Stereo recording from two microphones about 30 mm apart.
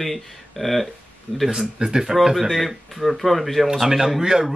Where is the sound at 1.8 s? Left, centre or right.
Right.